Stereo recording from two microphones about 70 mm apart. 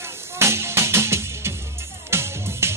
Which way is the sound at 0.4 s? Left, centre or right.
Right.